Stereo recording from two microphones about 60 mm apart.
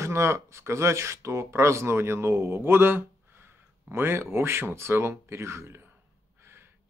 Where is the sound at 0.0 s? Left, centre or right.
Right.